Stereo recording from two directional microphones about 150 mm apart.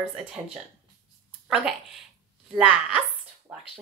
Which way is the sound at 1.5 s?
5° right (ahead or behind).